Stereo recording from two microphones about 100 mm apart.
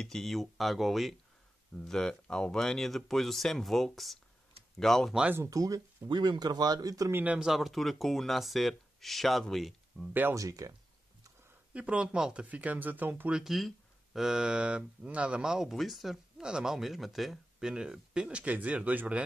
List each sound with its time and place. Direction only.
0.0 s speech: 5° left (ahead or behind)
5.3 s speech: 30° right (ahead or behind)
6.0 s speech: 50° right (ahead or behind)
7.1 s speech: 20° right (ahead or behind)
7.3 s speech: 5° right (ahead or behind)
10.3 s speech: 35° right (ahead or behind)
11.7 s speech: 10° right (ahead or behind)
13.4 s speech: centre (ahead or behind)